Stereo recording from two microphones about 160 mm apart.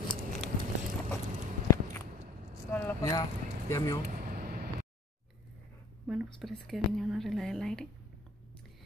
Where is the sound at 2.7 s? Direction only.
10° left (ahead or behind).